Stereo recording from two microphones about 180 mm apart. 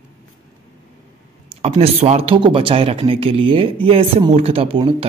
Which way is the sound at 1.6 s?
35° right (ahead or behind).